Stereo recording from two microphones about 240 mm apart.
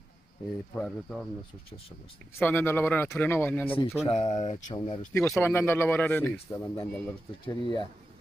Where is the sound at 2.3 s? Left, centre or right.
Centre.